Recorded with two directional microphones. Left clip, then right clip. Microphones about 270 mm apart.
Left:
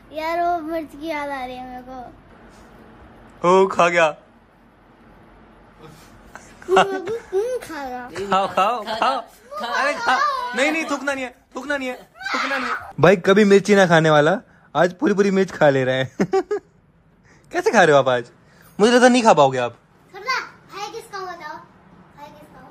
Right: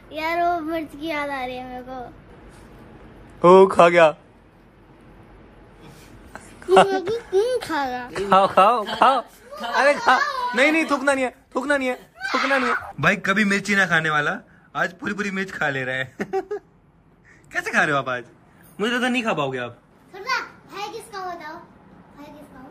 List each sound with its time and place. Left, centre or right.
0.1 s child singing: centre
3.3 s speech: centre
6.3 s a sound: centre
7.1 s speech: centre
13.0 s speech: centre
17.5 s a man's voice: centre
20.1 s children playing: centre